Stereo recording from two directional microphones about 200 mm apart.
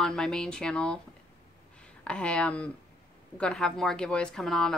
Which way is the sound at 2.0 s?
5° left (ahead or behind).